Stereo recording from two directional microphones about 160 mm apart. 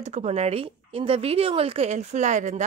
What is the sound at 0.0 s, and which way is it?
A woman's voice, 45° right (ahead or behind).